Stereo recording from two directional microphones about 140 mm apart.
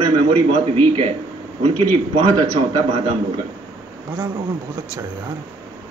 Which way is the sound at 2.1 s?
35° right (ahead or behind).